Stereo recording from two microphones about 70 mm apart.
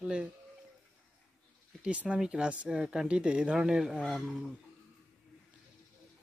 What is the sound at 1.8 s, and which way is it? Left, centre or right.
Speech, centre.